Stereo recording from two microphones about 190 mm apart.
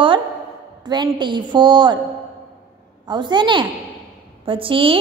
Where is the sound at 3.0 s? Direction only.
25° right (ahead or behind).